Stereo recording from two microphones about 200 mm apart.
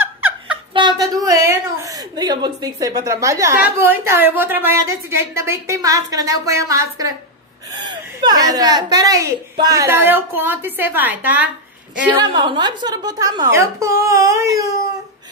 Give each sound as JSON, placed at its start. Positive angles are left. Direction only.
{"t": 0.0, "sound": "a sound", "side_deg": -10}
{"t": 0.7, "sound": "a woman's voice", "side_deg": -20}
{"t": 12.2, "sound": "a woman's voice", "side_deg": -25}